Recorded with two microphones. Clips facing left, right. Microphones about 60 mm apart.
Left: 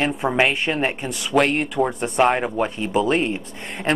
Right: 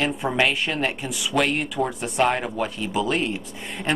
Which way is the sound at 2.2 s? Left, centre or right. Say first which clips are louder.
Left 3 dB; centre.